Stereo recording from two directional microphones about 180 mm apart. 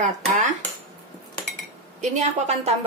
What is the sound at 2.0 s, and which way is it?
Speech, 40° right (ahead or behind).